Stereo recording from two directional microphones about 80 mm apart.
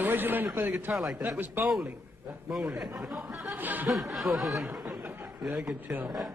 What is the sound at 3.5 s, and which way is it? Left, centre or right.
Chuckle, right.